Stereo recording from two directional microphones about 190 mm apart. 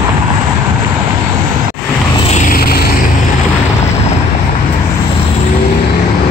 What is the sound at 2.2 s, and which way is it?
Vehicle, 40° left (ahead or behind).